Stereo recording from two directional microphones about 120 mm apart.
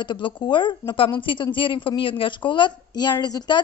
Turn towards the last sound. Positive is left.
turn(degrees=35)  # may be behind; listen again after turning